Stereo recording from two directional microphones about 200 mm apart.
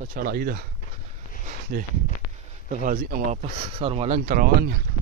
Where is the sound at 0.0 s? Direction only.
50° right (ahead or behind).